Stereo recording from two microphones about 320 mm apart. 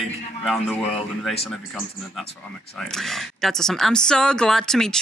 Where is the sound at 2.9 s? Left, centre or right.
Centre.